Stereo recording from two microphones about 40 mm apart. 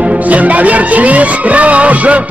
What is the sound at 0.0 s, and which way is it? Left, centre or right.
Music, right.